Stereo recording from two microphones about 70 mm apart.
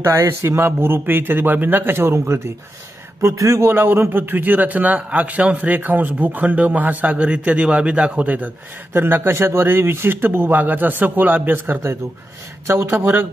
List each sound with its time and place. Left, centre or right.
0.0 s a man's voice: right
8.9 s speech: right
12.9 s speech: right